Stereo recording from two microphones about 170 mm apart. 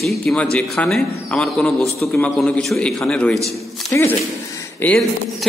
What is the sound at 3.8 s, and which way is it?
A man's voice, 15° left (ahead or behind).